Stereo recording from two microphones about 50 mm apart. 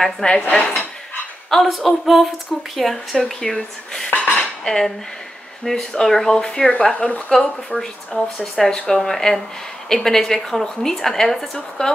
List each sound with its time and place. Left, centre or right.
0.0 s a woman's voice: centre
1.5 s a woman's voice: centre
4.2 s cutlery: centre
5.7 s a woman's voice: centre
7.2 s speech: centre
8.5 s a woman's voice: centre